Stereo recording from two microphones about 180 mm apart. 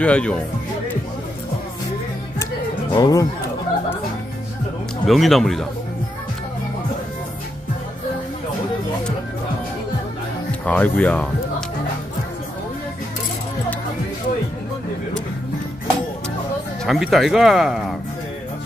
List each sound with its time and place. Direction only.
0.0 s speech: 5° left (ahead or behind)
2.9 s speech: 20° left (ahead or behind)
5.0 s speech: centre (ahead or behind)
10.6 s speech: 10° left (ahead or behind)
16.8 s speech: centre (ahead or behind)